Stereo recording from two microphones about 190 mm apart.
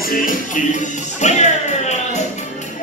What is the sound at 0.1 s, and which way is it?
Music, 45° left (ahead or behind).